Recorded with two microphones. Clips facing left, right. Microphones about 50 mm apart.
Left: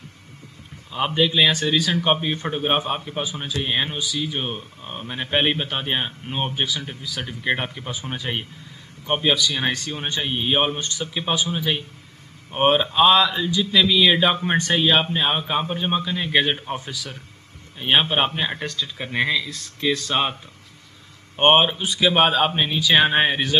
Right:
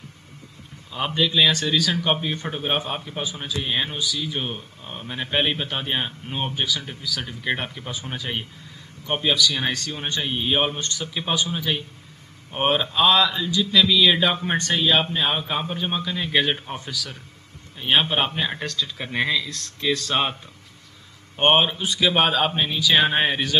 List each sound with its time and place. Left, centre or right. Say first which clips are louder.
0.9 s speech: left 2 dB; centre
21.5 s speech: left 2 dB; centre
22.6 s speech: left 1 dB; centre
23.2 s speech: left 2 dB; centre